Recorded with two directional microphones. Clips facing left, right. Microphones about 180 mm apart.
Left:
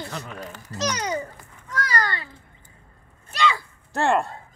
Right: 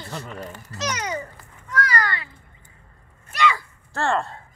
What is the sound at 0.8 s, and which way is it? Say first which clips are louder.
Speech: left 2 dB; 35° left (ahead or behind).